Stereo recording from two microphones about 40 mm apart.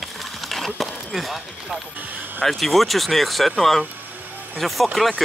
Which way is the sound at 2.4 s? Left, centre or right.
Centre.